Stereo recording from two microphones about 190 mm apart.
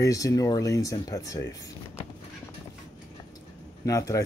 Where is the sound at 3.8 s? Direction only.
15° left (ahead or behind).